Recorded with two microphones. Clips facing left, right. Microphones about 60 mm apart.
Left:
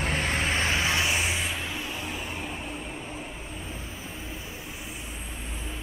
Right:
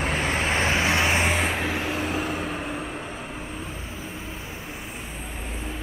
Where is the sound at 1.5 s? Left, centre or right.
Right.